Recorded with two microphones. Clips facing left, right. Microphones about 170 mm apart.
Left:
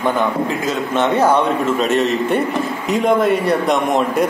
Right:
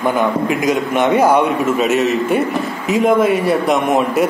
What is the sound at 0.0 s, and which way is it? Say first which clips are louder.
A man's voice: right 2 dB; 15° right (ahead or behind).